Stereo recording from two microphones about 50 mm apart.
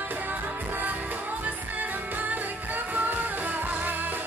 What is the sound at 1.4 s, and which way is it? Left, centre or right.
Music, right.